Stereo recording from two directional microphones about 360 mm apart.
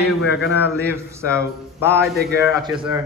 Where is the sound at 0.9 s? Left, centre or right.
Centre.